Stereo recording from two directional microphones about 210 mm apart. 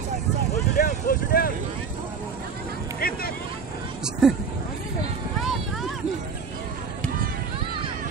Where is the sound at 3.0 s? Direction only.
45° left (ahead or behind).